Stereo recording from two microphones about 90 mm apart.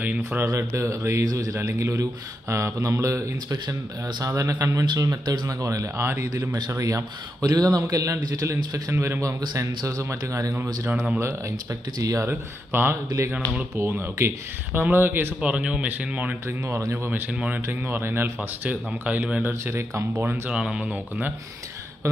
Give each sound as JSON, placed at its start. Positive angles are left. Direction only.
{"t": 0.0, "sound": "speech", "side_deg": -20}
{"t": 0.5, "sound": "a man's voice", "side_deg": -35}
{"t": 1.6, "sound": "a man's voice", "side_deg": -30}
{"t": 5.7, "sound": "a man's voice", "side_deg": -35}
{"t": 10.5, "sound": "speech", "side_deg": -20}
{"t": 12.0, "sound": "a man's voice", "side_deg": -35}
{"t": 12.3, "sound": "speech", "side_deg": -25}
{"t": 16.4, "sound": "speech", "side_deg": -30}
{"t": 17.3, "sound": "speech", "side_deg": -15}
{"t": 17.6, "sound": "speech", "side_deg": -25}
{"t": 19.6, "sound": "a man's voice", "side_deg": -35}
{"t": 20.2, "sound": "speech", "side_deg": -15}